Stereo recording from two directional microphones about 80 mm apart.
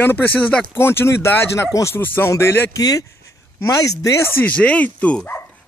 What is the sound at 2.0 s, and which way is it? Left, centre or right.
Speech, left.